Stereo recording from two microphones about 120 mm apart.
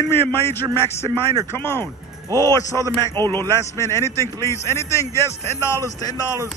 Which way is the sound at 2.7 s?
30° right (ahead or behind).